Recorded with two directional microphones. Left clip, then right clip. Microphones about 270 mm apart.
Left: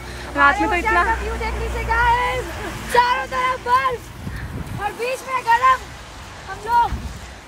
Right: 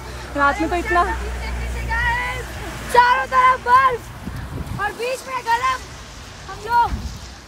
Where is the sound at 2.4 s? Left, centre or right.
Centre.